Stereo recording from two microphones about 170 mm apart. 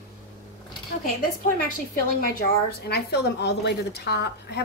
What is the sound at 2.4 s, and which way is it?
A woman's voice, 70° left (ahead or behind).